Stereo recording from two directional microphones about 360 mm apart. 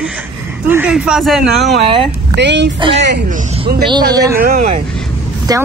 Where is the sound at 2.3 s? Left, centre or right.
Right.